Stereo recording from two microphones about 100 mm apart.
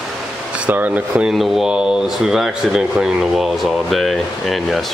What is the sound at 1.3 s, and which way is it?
Speech, 5° right (ahead or behind).